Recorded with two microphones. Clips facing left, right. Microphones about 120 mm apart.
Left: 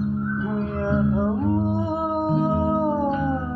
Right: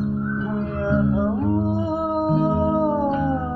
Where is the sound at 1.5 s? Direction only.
5° right (ahead or behind).